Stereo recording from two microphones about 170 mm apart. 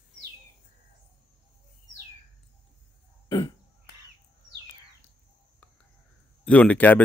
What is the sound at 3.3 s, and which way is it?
Cough, 25° left (ahead or behind).